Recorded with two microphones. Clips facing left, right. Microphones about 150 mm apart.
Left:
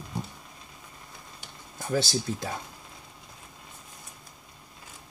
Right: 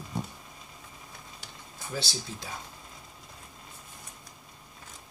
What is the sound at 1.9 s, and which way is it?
Speech, 50° left (ahead or behind).